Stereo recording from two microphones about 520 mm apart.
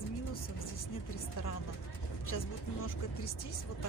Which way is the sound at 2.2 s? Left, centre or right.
Left.